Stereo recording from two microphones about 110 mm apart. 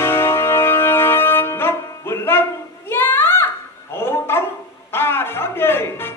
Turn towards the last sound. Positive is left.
turn(degrees=20)  # may be behind; listen again after turning